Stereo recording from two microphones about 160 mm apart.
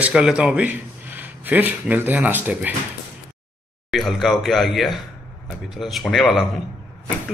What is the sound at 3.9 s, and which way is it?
Speech, centre (ahead or behind).